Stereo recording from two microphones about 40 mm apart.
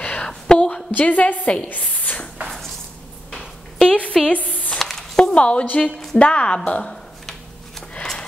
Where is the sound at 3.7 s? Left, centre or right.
Left.